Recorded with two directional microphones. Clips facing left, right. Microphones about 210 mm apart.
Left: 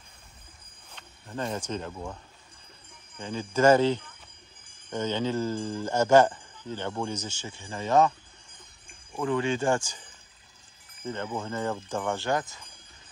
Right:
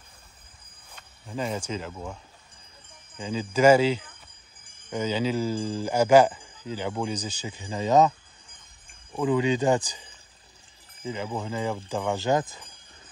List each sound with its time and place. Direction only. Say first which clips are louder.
0.9 s cricket: right 2 dB; 10° right (ahead or behind)
1.7 s speech: right 1 dB; 5° right (ahead or behind)
3.2 s speech: right 2 dB; 10° right (ahead or behind)
9.1 s speech: right 4 dB; 15° right (ahead or behind)
11.1 s speech: right 1 dB; 10° right (ahead or behind)